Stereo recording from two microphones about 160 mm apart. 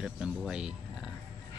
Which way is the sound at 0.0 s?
5° right (ahead or behind).